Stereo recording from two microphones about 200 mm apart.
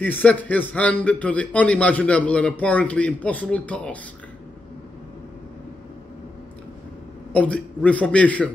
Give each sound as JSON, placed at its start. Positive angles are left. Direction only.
{"t": 0.0, "sound": "a man's voice", "side_deg": 10}
{"t": 7.3, "sound": "a man's voice", "side_deg": 5}